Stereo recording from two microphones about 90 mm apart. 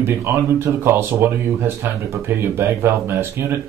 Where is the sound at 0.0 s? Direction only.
25° right (ahead or behind).